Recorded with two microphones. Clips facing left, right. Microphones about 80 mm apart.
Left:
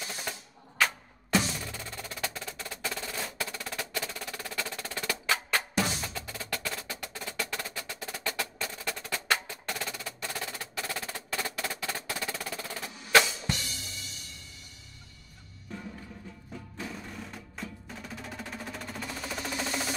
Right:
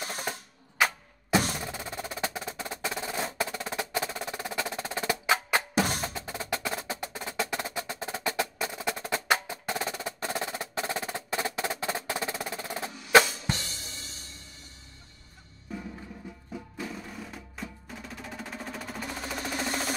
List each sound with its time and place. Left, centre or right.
0.0 s typewriter: right
0.8 s music: centre
1.6 s percussion: right
13.2 s music: right
15.7 s music: centre
16.5 s percussion: centre
19.2 s a sound: centre